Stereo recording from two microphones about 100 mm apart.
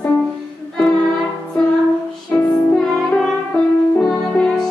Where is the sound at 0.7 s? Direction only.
5° left (ahead or behind).